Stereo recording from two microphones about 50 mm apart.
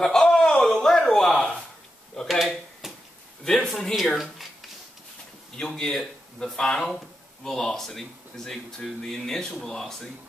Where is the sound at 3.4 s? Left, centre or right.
Centre.